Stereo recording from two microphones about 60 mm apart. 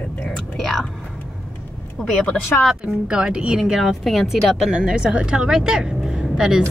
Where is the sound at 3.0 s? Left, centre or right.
Centre.